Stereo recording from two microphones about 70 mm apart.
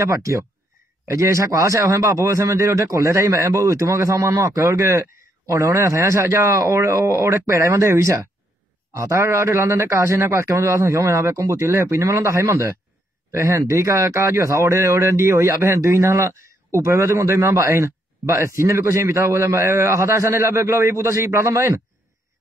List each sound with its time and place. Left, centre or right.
0.0 s a man's voice: right